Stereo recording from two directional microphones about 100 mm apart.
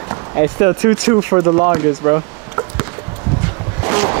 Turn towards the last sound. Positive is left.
turn(degrees=-25)  # may be behind; listen again after turning